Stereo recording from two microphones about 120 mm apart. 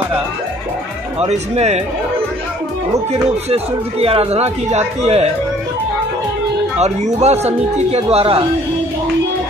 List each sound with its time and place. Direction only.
1.2 s speech: 65° right (ahead or behind)
3.1 s speech: 60° right (ahead or behind)
6.8 s speech: 65° right (ahead or behind)